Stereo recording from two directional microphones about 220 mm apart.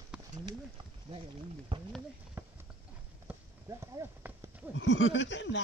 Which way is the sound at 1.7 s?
25° right (ahead or behind).